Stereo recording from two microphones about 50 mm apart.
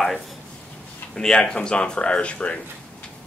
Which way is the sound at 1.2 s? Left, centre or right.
Centre.